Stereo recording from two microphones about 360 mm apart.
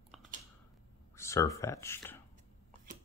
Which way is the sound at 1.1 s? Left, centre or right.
Centre.